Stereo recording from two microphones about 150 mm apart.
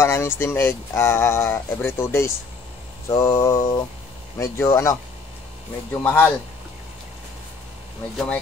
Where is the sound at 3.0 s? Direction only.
20° left (ahead or behind).